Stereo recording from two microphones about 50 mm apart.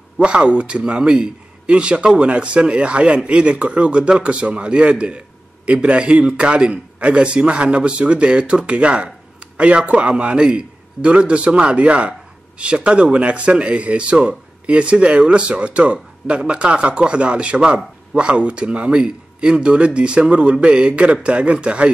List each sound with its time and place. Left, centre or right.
0.2 s a man's voice: right